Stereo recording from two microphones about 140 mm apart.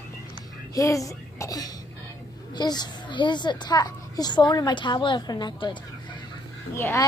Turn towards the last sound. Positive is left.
turn(degrees=20)  # may be behind; listen again after turning